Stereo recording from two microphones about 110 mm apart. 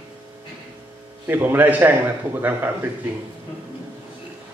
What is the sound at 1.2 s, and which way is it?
A man's voice, 20° right (ahead or behind).